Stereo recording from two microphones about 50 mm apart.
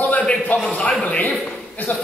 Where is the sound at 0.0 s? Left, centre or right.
Left.